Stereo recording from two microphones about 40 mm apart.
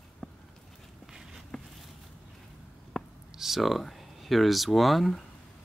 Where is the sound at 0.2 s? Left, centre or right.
Centre.